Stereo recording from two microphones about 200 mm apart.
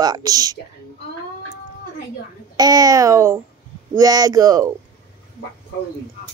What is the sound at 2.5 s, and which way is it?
A child's voice, 20° right (ahead or behind).